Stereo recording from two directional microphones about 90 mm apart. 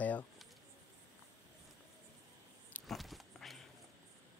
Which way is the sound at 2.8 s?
Centre (ahead or behind).